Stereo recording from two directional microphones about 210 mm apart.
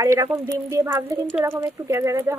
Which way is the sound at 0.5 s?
15° right (ahead or behind).